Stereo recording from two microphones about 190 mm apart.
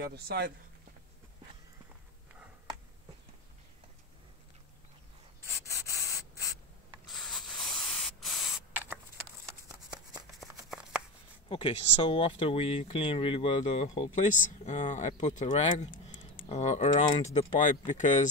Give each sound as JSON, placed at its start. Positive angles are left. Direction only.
{"t": 0.0, "sound": "speech", "side_deg": -55}
{"t": 5.9, "sound": "sanding", "side_deg": 15}
{"t": 7.1, "sound": "spray", "side_deg": 0}
{"t": 10.7, "sound": "shuffling cards", "side_deg": -5}
{"t": 11.4, "sound": "speech", "side_deg": 30}